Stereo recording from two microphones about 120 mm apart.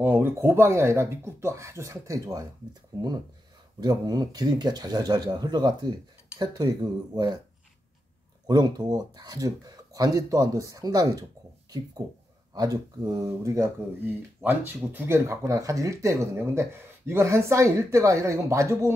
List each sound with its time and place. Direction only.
0.0 s speech: 20° right (ahead or behind)
3.8 s speech: 35° right (ahead or behind)
8.5 s speech: 35° right (ahead or behind)
12.5 s speech: 30° right (ahead or behind)